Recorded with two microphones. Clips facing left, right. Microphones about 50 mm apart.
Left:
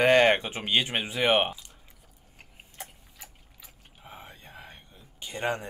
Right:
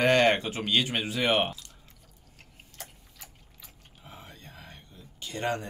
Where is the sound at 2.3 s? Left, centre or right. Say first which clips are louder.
Left 3 dB; centre.